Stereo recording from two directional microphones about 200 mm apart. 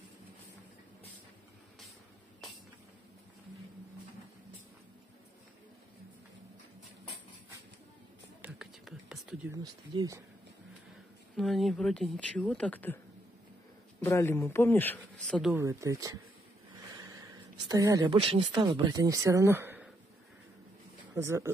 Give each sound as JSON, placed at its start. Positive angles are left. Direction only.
{"t": 8.4, "sound": "whispering", "side_deg": -5}
{"t": 9.5, "sound": "speech", "side_deg": -15}
{"t": 11.3, "sound": "speech", "side_deg": 0}
{"t": 14.0, "sound": "speech", "side_deg": 15}
{"t": 15.5, "sound": "speech", "side_deg": -15}
{"t": 21.1, "sound": "speech", "side_deg": -15}